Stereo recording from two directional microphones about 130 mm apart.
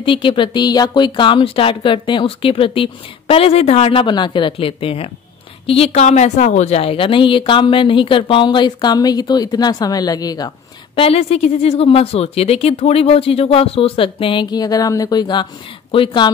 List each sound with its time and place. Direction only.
0.0 s speech: 40° left (ahead or behind)
11.0 s speech: 50° left (ahead or behind)